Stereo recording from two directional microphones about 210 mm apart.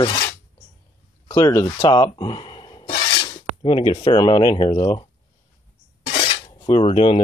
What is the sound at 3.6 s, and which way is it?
Speech, 25° left (ahead or behind).